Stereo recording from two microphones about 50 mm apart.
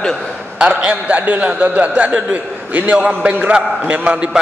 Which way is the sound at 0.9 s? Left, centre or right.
Right.